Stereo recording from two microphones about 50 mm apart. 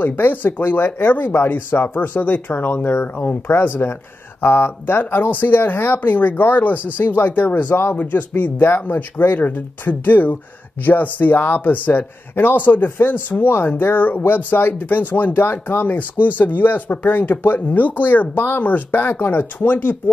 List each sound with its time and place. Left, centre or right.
0.0 s speech: left